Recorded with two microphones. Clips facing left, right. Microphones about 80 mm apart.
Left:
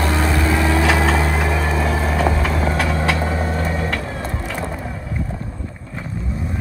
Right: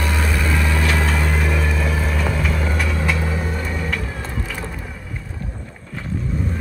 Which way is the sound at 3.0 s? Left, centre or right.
Left.